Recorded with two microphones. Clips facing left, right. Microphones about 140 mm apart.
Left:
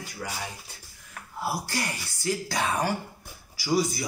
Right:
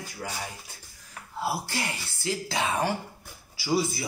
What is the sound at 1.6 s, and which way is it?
Speech, 25° right (ahead or behind).